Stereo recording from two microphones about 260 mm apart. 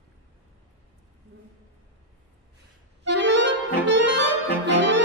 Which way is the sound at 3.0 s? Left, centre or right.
Right.